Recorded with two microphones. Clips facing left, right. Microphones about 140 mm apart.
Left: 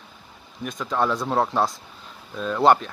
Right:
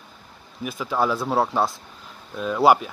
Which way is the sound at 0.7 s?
5° right (ahead or behind).